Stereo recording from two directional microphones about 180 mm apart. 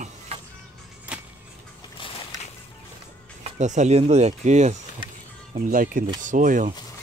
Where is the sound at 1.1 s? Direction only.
5° right (ahead or behind).